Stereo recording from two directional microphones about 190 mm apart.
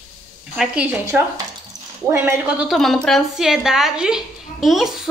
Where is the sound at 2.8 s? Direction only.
Centre (ahead or behind).